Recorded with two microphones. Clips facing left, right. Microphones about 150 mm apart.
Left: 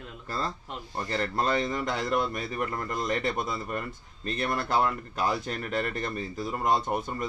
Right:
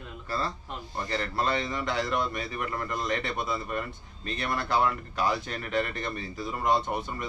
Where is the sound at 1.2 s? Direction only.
45° left (ahead or behind).